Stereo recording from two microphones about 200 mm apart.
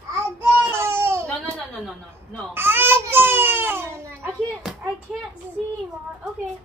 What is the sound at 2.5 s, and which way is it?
Baby cry, 10° right (ahead or behind).